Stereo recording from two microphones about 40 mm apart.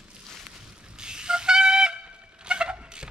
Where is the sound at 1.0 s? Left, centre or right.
Centre.